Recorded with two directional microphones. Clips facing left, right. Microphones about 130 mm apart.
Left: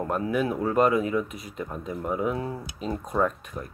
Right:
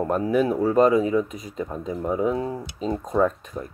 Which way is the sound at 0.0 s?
30° right (ahead or behind).